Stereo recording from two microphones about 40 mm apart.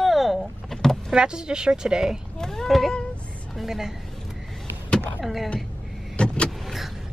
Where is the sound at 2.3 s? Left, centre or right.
Centre.